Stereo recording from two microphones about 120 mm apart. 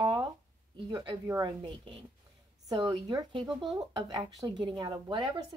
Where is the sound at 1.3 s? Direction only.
35° right (ahead or behind).